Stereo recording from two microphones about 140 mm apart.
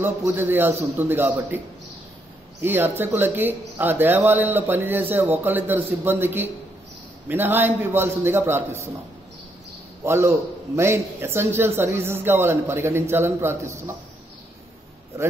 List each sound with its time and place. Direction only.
0.0 s speech: 15° right (ahead or behind)
2.6 s speech: 15° right (ahead or behind)
10.0 s a man's voice: 20° right (ahead or behind)